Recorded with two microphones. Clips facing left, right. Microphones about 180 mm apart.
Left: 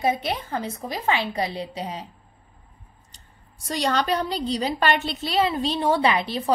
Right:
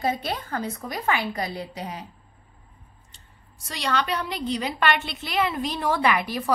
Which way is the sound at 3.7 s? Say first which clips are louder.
Left 4 dB; 40° left (ahead or behind).